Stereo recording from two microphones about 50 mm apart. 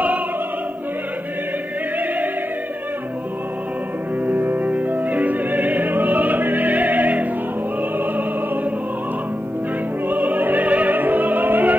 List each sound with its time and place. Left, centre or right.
4.3 s music: right
10.0 s opera: right